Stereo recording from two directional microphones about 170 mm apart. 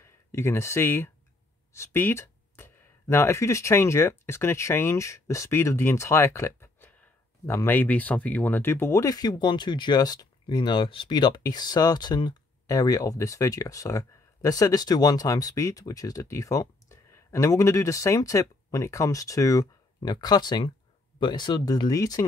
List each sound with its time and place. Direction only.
0.0 s speech: 15° left (ahead or behind)